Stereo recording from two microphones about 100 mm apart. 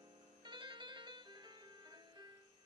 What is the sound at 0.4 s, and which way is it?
Music, 50° right (ahead or behind).